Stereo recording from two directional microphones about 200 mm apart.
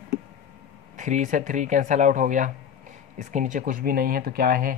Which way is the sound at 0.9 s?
40° right (ahead or behind).